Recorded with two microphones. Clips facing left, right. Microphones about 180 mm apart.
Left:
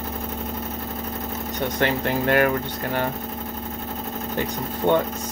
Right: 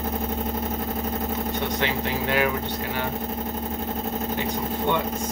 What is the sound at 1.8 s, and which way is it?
Speech, 50° left (ahead or behind).